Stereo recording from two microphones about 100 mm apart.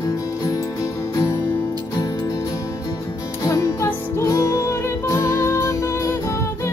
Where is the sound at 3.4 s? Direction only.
30° left (ahead or behind).